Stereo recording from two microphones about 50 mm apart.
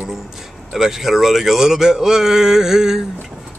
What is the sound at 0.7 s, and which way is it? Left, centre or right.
Speech, centre.